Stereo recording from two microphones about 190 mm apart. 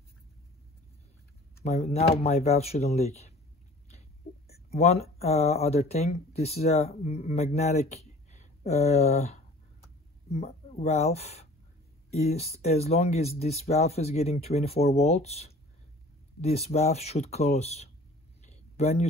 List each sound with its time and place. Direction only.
1.6 s speech: 35° left (ahead or behind)
4.5 s speech: 35° left (ahead or behind)
18.4 s a sound: 35° left (ahead or behind)